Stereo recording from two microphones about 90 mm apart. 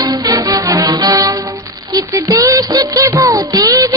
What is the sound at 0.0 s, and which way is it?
Music, 45° right (ahead or behind).